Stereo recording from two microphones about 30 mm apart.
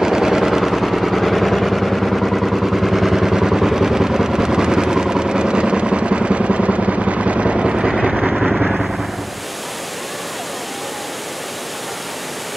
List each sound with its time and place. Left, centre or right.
0.0 s vehicle: centre; by 7.0 s right
7.1 s machine gun: right
7.5 s vehicle: right
7.9 s vehicle: centre